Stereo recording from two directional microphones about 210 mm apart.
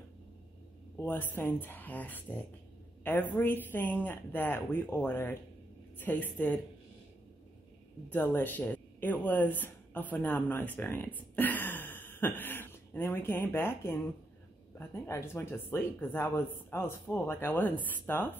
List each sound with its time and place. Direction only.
0.9 s speech: 10° left (ahead or behind)
8.1 s speech: 10° left (ahead or behind)